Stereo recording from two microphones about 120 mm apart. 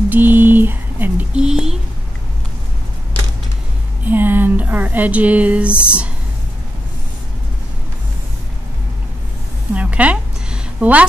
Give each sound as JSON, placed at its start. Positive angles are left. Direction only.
{"t": 0.1, "sound": "speech", "side_deg": -15}
{"t": 4.0, "sound": "speech", "side_deg": -15}
{"t": 9.8, "sound": "a sound", "side_deg": -10}